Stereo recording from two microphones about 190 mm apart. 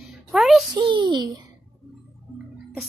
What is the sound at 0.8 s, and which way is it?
Speech, 25° right (ahead or behind).